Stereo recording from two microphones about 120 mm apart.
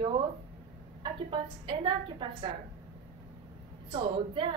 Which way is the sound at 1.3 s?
45° right (ahead or behind).